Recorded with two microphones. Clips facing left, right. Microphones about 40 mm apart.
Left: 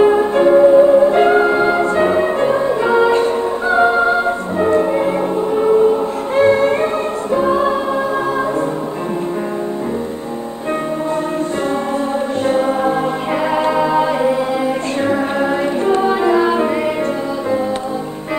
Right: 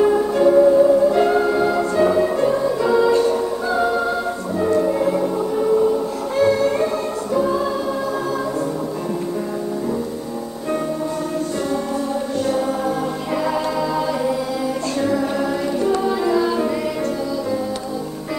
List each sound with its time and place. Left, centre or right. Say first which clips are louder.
0.0 s music: left 4 dB; left
12.4 s music: left 7 dB; left
15.8 s music: left 4 dB; left